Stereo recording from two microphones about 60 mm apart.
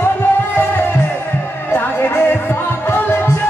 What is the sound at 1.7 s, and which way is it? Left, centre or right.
Music, left.